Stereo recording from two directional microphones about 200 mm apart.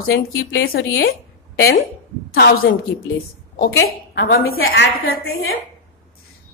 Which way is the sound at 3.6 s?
90° left.